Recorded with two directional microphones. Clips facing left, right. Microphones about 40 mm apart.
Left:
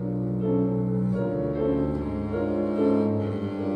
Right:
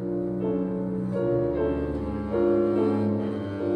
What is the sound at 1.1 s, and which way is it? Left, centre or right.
Music, centre.